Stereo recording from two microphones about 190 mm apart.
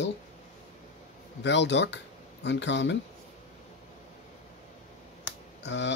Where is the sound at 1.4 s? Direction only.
70° left (ahead or behind).